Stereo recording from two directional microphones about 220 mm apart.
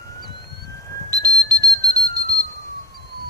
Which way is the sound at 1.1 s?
15° right (ahead or behind).